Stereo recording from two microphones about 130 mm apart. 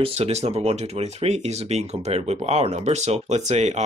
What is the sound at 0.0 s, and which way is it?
Speech, 55° right (ahead or behind).